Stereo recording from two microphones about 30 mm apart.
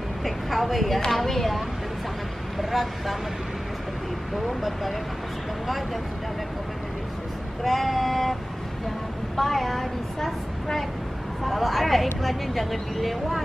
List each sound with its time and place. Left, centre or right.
0.2 s a woman's voice: centre
4.4 s speech: centre
7.6 s speech: centre
9.4 s speech: centre